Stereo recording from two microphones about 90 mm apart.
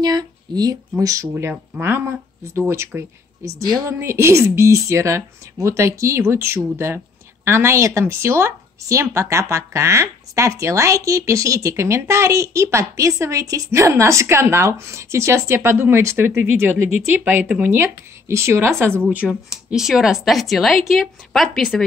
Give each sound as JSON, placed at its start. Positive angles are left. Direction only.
{"t": 0.0, "sound": "speech", "side_deg": -45}
{"t": 1.5, "sound": "speech", "side_deg": -25}
{"t": 3.6, "sound": "speech", "side_deg": -45}
{"t": 4.0, "sound": "speech", "side_deg": -30}
{"t": 19.2, "sound": "speech", "side_deg": -5}